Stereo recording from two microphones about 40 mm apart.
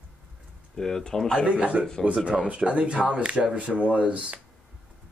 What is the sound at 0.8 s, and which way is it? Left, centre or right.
Speech, centre.